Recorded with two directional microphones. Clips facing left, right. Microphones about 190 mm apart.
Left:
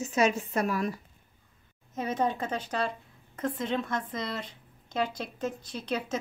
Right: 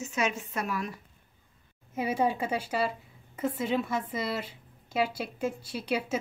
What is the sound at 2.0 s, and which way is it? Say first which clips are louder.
A woman's voice: right 1 dB; 10° right (ahead or behind).